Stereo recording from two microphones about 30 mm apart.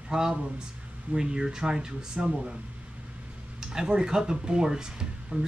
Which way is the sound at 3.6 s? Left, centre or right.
Right.